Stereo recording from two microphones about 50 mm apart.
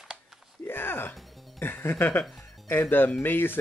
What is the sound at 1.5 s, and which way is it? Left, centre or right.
Speech, left.